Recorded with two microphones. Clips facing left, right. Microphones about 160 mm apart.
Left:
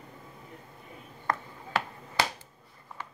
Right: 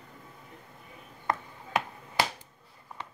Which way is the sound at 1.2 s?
15° right (ahead or behind).